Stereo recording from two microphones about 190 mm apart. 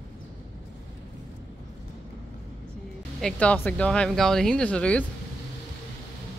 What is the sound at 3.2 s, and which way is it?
Speech, 5° left (ahead or behind).